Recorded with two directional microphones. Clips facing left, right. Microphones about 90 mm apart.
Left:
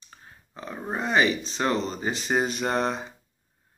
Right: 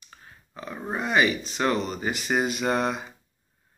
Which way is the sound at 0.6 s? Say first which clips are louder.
Even; 30° left (ahead or behind).